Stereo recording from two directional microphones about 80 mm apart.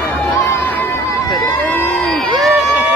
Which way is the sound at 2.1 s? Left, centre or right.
Centre.